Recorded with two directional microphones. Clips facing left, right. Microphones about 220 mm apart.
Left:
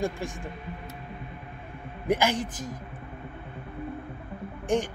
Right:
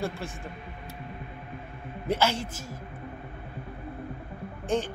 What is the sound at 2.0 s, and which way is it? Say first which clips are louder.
Speech: left 2 dB; 15° left (ahead or behind).